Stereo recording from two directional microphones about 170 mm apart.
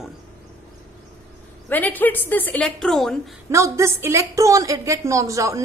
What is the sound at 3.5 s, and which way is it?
A woman's voice, 15° right (ahead or behind).